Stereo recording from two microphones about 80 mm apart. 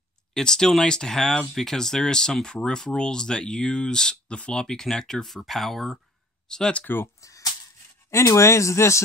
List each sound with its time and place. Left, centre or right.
0.3 s speech: centre
6.5 s speech: centre
7.2 s a sound: left
8.1 s speech: left